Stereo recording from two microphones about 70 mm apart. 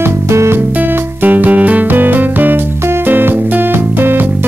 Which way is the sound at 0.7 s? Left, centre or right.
Right.